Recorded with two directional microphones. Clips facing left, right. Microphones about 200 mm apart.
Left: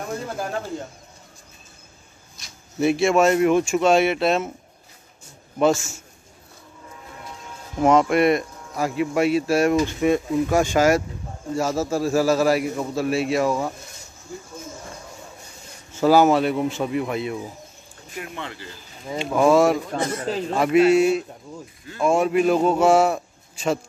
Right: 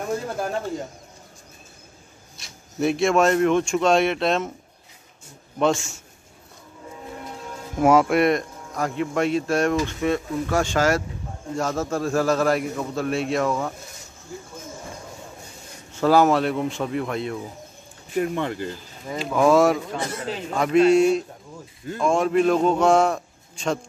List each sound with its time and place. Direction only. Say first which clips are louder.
0.4 s speech: right 1 dB; centre (ahead or behind)
2.8 s a man's voice: left 1 dB; centre (ahead or behind)
7.8 s a man's voice: even; 5° right (ahead or behind)
15.9 s a man's voice: left 2 dB; 5° left (ahead or behind)
18.1 s speech: right 10 dB; 45° right (ahead or behind)
19.0 s a man's voice: left 1 dB; centre (ahead or behind)
19.9 s a man's voice: left 4 dB; 40° left (ahead or behind)
20.5 s a man's voice: even; 5° left (ahead or behind)